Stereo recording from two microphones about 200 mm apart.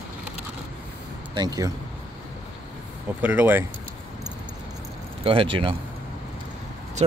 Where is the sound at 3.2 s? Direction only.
10° right (ahead or behind).